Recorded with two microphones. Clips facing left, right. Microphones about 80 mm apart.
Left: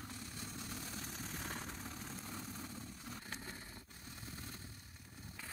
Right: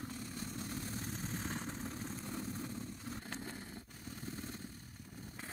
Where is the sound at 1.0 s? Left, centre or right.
Right.